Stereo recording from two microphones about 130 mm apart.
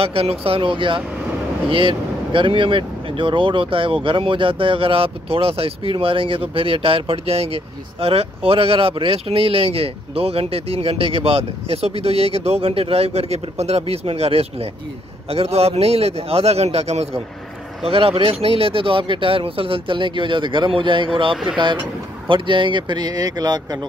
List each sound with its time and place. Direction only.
0.0 s speech: 45° right (ahead or behind); by 23.8 s 30° right (ahead or behind)